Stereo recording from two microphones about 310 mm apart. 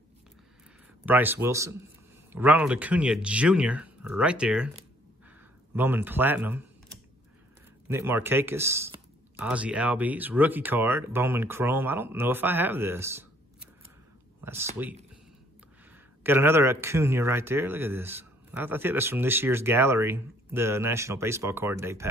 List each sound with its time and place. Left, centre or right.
1.0 s a man's voice: centre
5.8 s a man's voice: centre
7.9 s a man's voice: centre
14.4 s a sound: centre
16.2 s a man's voice: centre